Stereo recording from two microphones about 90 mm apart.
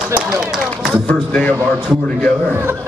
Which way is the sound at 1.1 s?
10° left (ahead or behind).